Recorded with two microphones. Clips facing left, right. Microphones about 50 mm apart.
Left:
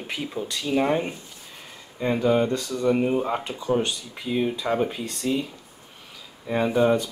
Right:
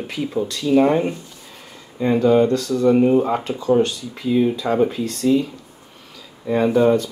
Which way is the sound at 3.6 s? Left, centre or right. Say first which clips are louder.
Right 8 dB; centre.